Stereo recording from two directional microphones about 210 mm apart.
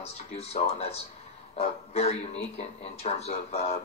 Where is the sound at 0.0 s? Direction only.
30° left (ahead or behind).